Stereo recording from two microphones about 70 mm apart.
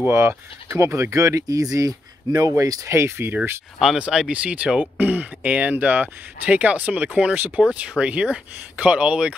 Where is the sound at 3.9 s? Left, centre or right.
Centre.